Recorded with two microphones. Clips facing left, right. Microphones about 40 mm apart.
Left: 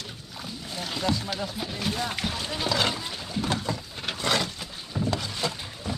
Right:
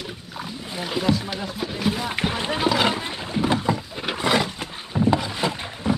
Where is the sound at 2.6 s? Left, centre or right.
Right.